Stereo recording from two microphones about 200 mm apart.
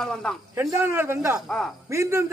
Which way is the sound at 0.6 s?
10° right (ahead or behind).